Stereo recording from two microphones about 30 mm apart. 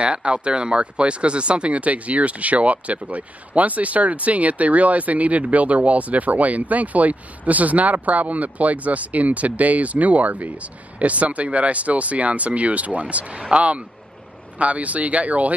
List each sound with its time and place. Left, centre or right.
0.0 s speech: right